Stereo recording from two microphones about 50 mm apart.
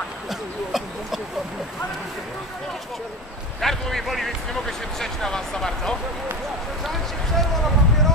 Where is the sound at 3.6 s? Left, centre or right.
Centre.